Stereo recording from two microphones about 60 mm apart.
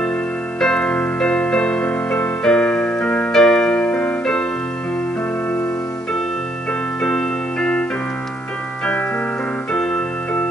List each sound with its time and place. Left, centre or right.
0.6 s music: centre
2.4 s keyboard: centre
7.0 s music: centre
9.7 s keyboard: centre